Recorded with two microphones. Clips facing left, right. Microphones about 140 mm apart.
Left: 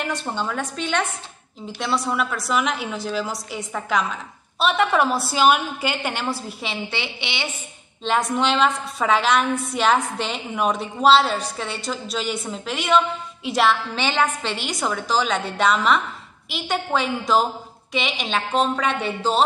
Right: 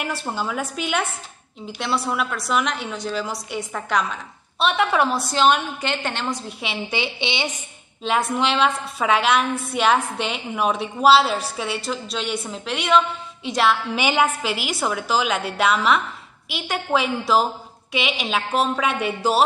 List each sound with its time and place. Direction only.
0.0 s a woman's voice: 5° right (ahead or behind)
6.9 s a woman's voice: 20° right (ahead or behind)
8.0 s a woman's voice: centre (ahead or behind)
13.9 s a woman's voice: 10° right (ahead or behind)